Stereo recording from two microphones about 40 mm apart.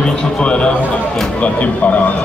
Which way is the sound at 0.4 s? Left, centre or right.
Left.